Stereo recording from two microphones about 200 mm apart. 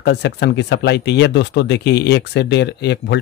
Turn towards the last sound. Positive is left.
turn(degrees=60)  # may be behind; listen again after turning